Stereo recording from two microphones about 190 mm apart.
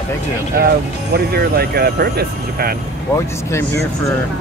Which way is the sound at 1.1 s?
55° right (ahead or behind).